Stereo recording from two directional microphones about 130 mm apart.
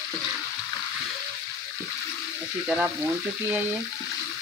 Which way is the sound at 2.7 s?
5° right (ahead or behind).